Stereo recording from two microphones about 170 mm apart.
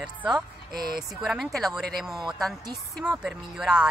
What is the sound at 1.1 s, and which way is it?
Speech, centre (ahead or behind).